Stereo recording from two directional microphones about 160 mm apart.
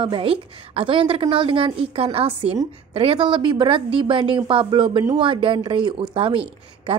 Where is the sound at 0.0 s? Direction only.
35° right (ahead or behind).